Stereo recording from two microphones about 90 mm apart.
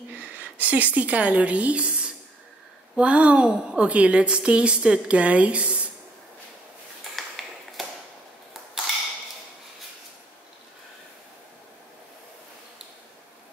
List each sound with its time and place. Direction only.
0.1 s a woman's voice: 15° right (ahead or behind)
7.2 s tap: centre (ahead or behind)